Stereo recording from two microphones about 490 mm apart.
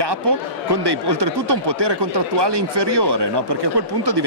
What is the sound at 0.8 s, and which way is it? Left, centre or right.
Speech, right.